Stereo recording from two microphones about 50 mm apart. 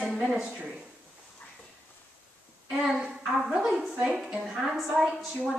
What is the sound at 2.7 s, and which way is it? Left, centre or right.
A child's voice, centre.